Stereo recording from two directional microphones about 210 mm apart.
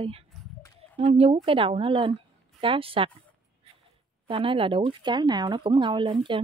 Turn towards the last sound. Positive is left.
turn(degrees=-25)  # may be behind; listen again after turning